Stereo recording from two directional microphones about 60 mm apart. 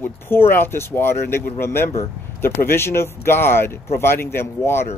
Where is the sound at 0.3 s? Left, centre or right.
Left.